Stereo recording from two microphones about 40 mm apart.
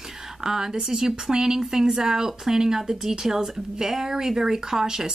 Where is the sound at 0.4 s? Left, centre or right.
Centre.